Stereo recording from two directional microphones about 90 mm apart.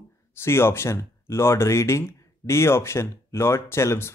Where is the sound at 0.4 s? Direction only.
25° left (ahead or behind).